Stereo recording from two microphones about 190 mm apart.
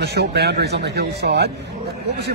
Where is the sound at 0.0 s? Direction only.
55° right (ahead or behind).